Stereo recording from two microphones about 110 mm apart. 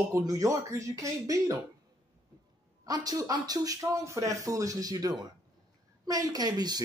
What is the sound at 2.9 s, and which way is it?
A man's voice, 35° right (ahead or behind).